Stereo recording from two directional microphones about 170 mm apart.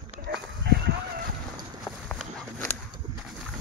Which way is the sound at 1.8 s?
5° left (ahead or behind).